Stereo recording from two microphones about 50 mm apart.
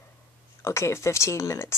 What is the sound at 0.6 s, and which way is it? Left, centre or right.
Speech, left.